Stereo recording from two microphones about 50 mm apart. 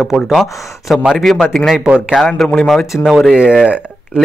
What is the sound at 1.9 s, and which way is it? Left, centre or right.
Speech, centre.